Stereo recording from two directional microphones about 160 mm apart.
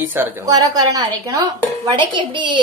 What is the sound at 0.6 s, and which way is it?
A woman's voice, 25° right (ahead or behind).